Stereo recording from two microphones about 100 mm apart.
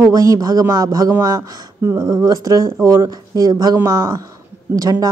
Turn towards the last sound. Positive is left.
turn(degrees=-40)  # may be behind; listen again after turning